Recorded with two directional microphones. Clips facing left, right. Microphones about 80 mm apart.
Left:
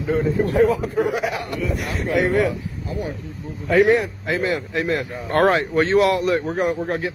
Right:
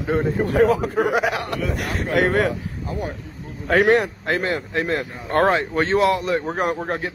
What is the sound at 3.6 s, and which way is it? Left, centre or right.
Speech, right.